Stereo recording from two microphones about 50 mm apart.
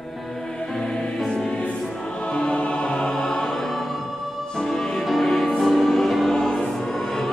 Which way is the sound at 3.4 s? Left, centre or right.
Centre.